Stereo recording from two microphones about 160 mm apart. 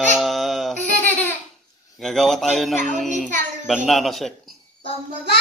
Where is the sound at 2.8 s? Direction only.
50° right (ahead or behind).